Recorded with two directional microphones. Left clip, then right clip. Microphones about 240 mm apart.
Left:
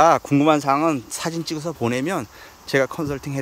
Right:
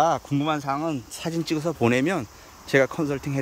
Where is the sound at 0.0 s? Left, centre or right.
Centre.